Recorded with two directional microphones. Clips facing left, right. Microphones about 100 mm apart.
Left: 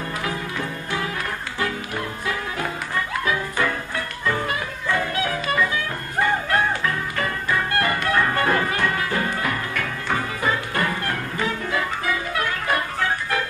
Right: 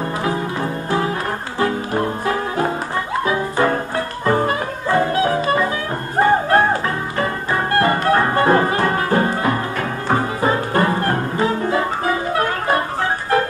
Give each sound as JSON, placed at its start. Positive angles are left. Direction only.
{"t": 0.2, "sound": "music", "side_deg": -30}